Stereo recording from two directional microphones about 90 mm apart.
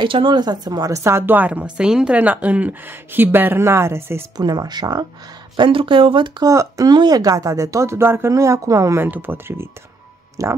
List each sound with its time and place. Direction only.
0.0 s speech: 65° right (ahead or behind); by 0.9 s 50° right (ahead or behind)
0.9 s speech: 30° right (ahead or behind)
4.4 s speech: 50° right (ahead or behind)
5.6 s speech: 75° right (ahead or behind)
6.4 s speech: 40° right (ahead or behind)
6.9 s speech: 50° right (ahead or behind)
9.0 s speech: 20° right (ahead or behind)
10.4 s speech: 35° right (ahead or behind)